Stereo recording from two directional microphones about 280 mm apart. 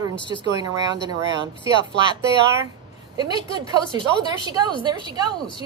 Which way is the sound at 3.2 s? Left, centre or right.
Centre.